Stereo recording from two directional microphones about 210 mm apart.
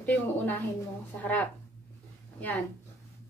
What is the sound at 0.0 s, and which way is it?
A woman's voice, 10° left (ahead or behind).